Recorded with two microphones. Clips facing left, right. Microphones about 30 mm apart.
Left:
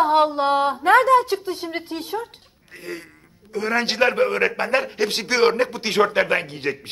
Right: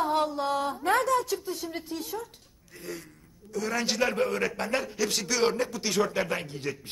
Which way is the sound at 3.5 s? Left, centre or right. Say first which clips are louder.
Left 7 dB; left.